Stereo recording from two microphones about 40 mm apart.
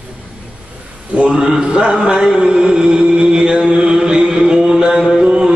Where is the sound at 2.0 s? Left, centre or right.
Centre.